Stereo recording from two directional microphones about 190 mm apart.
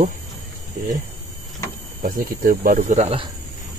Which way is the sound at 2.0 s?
45° right (ahead or behind).